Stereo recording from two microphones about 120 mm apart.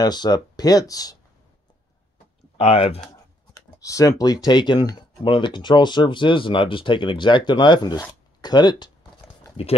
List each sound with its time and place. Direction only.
0.0 s speech: 35° left (ahead or behind)
2.5 s speech: 55° left (ahead or behind)
3.5 s speech: 30° left (ahead or behind)